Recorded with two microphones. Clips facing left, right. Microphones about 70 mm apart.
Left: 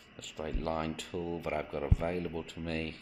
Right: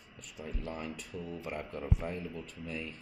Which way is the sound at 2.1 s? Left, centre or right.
Left.